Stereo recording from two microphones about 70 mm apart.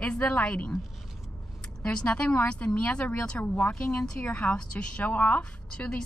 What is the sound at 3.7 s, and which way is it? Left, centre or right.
A woman's voice, centre.